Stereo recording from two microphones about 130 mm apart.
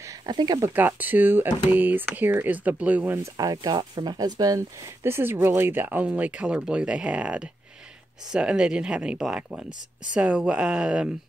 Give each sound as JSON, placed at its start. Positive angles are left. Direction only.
{"t": 0.3, "sound": "speech", "side_deg": -35}
{"t": 0.6, "sound": "speech", "side_deg": -15}
{"t": 3.3, "sound": "speech", "side_deg": -30}